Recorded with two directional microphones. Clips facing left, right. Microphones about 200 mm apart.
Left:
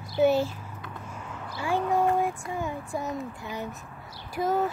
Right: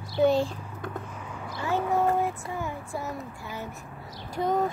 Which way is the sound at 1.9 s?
15° left (ahead or behind).